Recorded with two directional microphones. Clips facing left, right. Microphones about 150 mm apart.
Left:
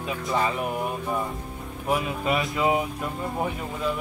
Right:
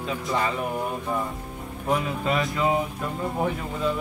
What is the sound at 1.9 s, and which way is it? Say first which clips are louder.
Speech: even; 10° left (ahead or behind).